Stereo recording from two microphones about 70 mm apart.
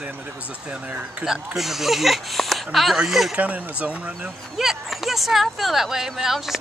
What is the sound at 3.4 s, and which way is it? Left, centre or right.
Speech, right.